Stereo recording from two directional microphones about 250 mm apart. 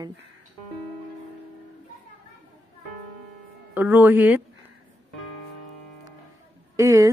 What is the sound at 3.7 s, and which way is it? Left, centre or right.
Speech, centre.